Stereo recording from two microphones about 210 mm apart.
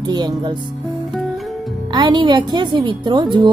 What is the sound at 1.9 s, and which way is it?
Speech, 20° right (ahead or behind).